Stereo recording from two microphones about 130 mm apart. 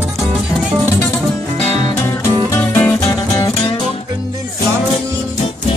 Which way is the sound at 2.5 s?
15° left (ahead or behind).